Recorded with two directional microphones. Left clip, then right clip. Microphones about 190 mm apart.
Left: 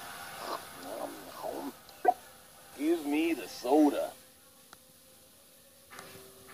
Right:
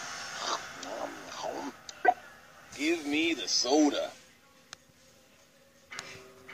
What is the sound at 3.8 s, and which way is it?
Music, 15° right (ahead or behind).